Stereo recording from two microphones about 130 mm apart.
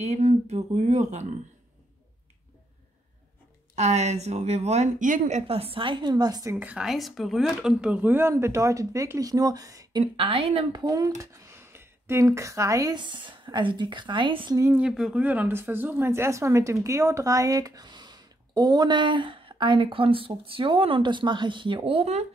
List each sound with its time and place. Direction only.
0.0 s speech: 60° right (ahead or behind)
3.7 s speech: 60° right (ahead or behind); by 5.4 s 85° right
5.5 s speech: 45° right (ahead or behind); by 6.5 s 30° right (ahead or behind)
6.5 s speech: 10° right (ahead or behind); by 10.0 s 25° right (ahead or behind)
10.1 s speech: 45° right (ahead or behind)
10.8 s speech: 25° right (ahead or behind)
14.6 s speech: 10° right (ahead or behind); by 22.2 s 50° right (ahead or behind)